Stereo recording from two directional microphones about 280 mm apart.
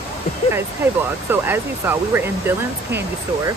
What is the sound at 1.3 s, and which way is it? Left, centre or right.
Speech, centre.